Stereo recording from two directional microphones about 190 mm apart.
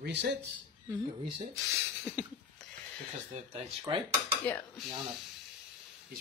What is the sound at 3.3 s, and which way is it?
Speech, 35° right (ahead or behind).